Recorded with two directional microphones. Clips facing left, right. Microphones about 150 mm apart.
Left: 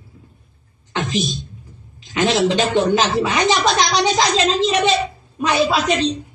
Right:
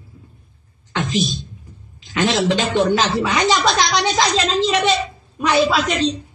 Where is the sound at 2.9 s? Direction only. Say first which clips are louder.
Left 1 dB; 25° left (ahead or behind).